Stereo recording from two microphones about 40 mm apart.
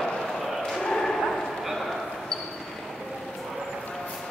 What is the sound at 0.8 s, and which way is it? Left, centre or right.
Dog, centre.